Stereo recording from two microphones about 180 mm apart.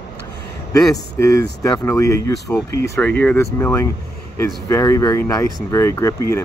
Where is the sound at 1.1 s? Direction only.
15° left (ahead or behind).